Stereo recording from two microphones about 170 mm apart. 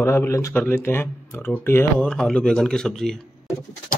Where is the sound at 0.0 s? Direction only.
15° left (ahead or behind).